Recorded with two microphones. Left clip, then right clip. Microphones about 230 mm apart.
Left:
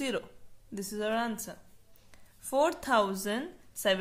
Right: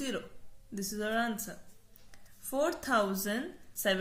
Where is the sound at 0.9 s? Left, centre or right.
Left.